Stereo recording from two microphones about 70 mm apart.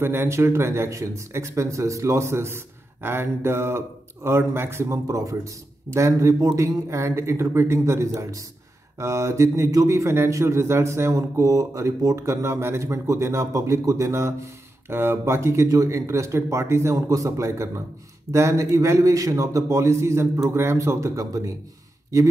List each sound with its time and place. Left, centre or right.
0.0 s a man's voice: right